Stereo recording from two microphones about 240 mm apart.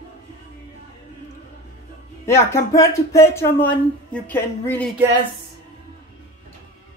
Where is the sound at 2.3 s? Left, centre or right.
Centre.